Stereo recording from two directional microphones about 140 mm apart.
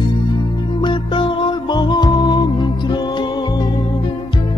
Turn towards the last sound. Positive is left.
turn(degrees=30)  # may be behind; listen again after turning